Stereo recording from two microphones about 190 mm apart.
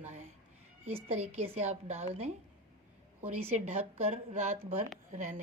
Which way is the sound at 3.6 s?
35° right (ahead or behind).